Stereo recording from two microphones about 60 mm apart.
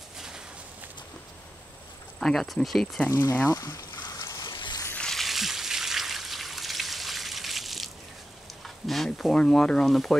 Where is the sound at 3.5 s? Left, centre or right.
Left.